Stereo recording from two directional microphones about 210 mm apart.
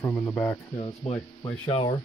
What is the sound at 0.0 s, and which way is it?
Speech, 5° left (ahead or behind).